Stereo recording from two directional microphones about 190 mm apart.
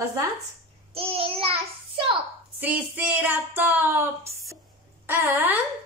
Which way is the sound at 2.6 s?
10° right (ahead or behind).